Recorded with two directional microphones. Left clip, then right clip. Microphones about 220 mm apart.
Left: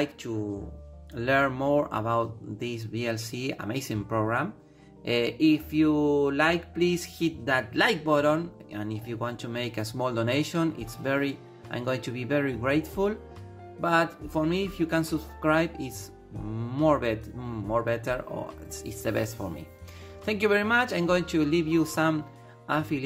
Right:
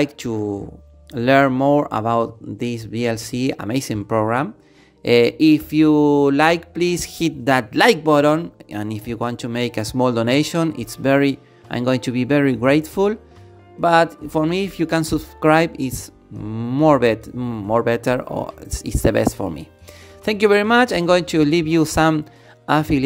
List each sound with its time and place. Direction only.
0.0 s speech: 45° right (ahead or behind)